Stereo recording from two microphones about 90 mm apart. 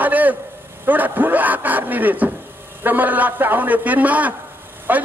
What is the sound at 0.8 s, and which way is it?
A man's voice, 20° right (ahead or behind).